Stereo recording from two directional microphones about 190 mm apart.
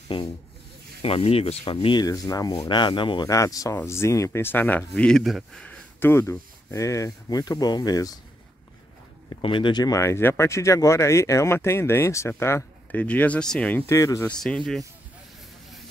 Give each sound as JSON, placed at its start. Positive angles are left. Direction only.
{"t": 1.0, "sound": "speech", "side_deg": 30}
{"t": 9.3, "sound": "speech", "side_deg": 25}